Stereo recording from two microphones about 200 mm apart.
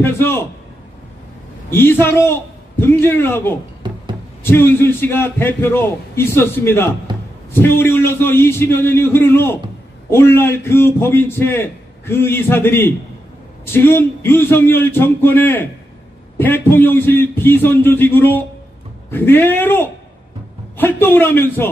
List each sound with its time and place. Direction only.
0.0 s a man's voice: 15° left (ahead or behind)
1.7 s a man's voice: 10° left (ahead or behind)
3.8 s a sound: 20° right (ahead or behind)
4.4 s a man's voice: 10° left (ahead or behind)